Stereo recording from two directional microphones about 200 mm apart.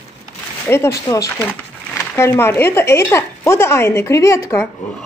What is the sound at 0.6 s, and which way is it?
Speech, 15° left (ahead or behind).